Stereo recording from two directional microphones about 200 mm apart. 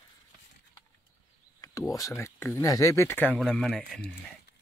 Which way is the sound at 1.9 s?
15° left (ahead or behind).